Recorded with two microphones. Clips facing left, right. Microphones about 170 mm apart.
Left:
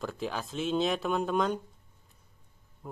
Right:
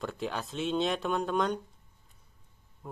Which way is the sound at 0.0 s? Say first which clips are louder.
Even; centre (ahead or behind).